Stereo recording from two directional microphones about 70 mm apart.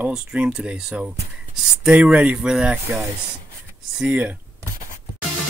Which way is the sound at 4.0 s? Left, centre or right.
Centre.